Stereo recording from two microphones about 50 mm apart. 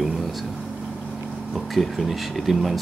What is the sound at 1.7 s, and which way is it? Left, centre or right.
Speech, centre.